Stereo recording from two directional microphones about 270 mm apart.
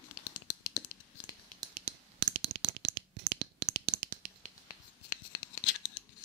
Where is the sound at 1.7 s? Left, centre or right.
Right.